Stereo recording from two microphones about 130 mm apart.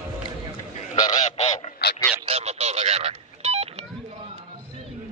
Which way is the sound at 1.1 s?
60° left (ahead or behind).